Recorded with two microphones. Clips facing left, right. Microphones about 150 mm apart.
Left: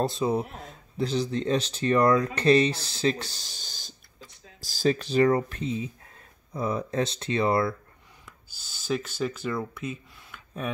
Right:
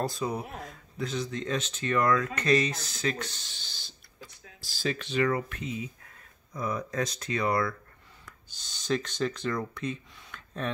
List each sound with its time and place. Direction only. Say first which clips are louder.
0.0 s speech: left 5 dB; 25° left (ahead or behind)
8.3 s speech: even; 5° left (ahead or behind)